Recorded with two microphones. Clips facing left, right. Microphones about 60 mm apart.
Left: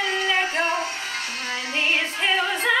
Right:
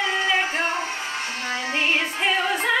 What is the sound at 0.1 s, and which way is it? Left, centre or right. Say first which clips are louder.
Music: right 1 dB; centre.